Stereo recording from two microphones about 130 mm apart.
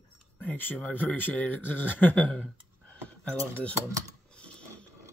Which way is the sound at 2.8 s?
10° left (ahead or behind).